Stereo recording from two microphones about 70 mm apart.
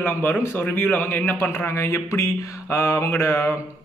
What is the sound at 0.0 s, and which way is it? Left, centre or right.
Speech, left.